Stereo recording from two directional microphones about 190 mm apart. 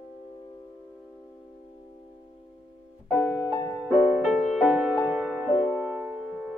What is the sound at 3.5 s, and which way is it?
Music, 20° left (ahead or behind).